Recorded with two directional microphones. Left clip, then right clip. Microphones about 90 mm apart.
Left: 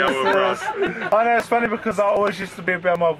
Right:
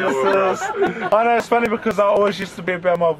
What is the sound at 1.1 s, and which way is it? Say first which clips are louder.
Speech: right 1 dB; 35° right (ahead or behind).